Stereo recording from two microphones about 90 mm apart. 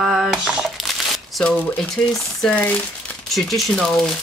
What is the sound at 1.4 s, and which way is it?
Speech, 10° left (ahead or behind).